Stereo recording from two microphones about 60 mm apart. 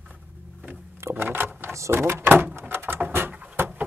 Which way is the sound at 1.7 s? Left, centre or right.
Right.